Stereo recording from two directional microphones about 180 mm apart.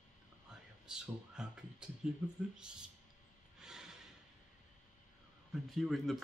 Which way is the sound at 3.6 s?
5° right (ahead or behind).